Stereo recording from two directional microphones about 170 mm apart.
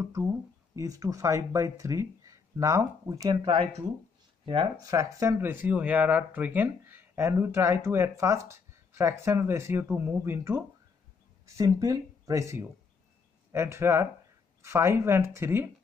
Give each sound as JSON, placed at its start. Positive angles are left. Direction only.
{"t": 0.0, "sound": "speech", "side_deg": -20}